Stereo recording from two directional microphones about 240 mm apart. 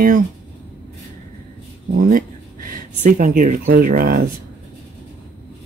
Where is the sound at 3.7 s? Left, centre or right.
Right.